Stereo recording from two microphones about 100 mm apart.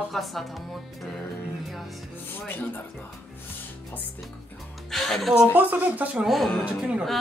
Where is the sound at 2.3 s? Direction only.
20° left (ahead or behind).